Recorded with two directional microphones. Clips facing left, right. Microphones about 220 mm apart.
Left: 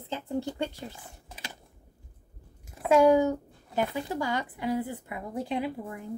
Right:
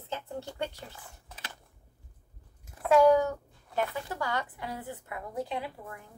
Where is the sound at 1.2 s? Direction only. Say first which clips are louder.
Left 4 dB; 10° left (ahead or behind).